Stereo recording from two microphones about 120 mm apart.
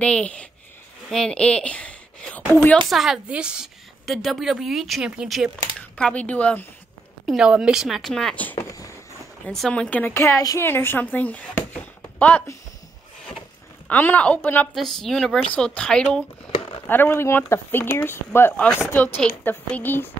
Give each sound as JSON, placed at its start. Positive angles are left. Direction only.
{"t": 0.0, "sound": "a woman's voice", "side_deg": 10}
{"t": 2.9, "sound": "a woman's voice", "side_deg": 0}
{"t": 5.8, "sound": "speech", "side_deg": 10}
{"t": 7.2, "sound": "a woman's voice", "side_deg": -5}
{"t": 8.5, "sound": "a sound", "side_deg": 30}
{"t": 9.5, "sound": "a woman's voice", "side_deg": 5}
{"t": 10.1, "sound": "speech", "side_deg": 25}
{"t": 13.8, "sound": "a woman's voice", "side_deg": 15}
{"t": 14.8, "sound": "a woman's voice", "side_deg": 0}
{"t": 16.8, "sound": "a woman's voice", "side_deg": 15}